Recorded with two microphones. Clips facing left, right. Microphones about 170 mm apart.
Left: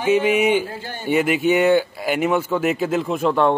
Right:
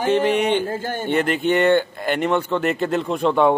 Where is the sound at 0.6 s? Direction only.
45° right (ahead or behind).